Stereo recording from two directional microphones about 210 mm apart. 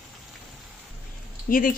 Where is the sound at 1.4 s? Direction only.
40° left (ahead or behind).